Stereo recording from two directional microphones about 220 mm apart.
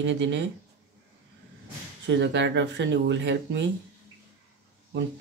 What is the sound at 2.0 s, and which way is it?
Speech, 55° right (ahead or behind).